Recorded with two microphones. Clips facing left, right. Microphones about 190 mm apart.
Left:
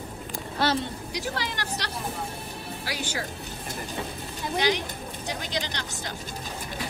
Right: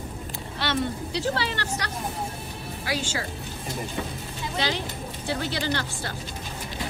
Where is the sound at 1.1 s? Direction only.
15° left (ahead or behind).